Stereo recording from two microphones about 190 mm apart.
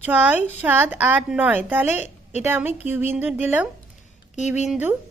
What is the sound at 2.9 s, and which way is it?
A woman's voice, 10° right (ahead or behind).